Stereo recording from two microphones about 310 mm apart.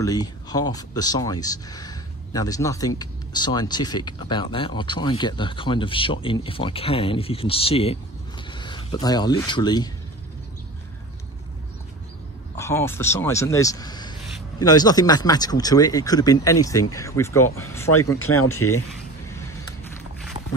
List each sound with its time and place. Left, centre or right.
0.0 s speech: centre
12.5 s speech: centre
18.2 s speech: left